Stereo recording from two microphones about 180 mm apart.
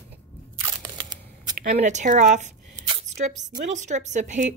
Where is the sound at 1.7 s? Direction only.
40° right (ahead or behind).